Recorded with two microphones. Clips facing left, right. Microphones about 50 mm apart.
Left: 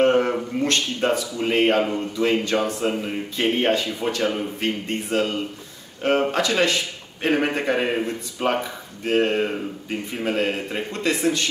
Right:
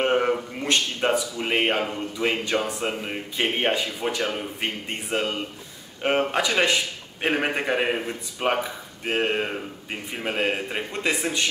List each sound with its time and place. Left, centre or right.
0.0 s speech: centre